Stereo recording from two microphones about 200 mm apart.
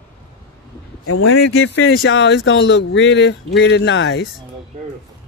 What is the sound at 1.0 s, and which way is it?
Speech, 75° left (ahead or behind).